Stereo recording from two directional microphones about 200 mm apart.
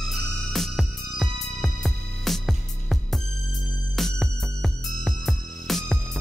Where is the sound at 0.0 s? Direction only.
Centre (ahead or behind).